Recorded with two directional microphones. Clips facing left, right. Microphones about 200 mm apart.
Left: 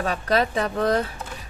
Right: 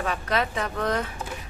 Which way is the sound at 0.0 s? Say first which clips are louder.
Left 4 dB; 35° left (ahead or behind).